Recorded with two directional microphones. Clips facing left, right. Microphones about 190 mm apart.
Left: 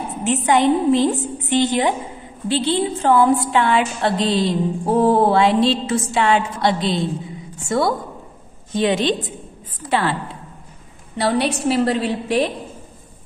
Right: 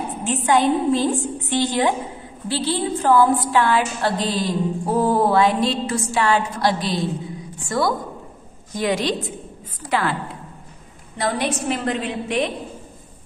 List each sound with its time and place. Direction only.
0.5 s music: 20° left (ahead or behind)
9.8 s a woman's voice: 30° left (ahead or behind)
11.1 s a woman's voice: 30° left (ahead or behind)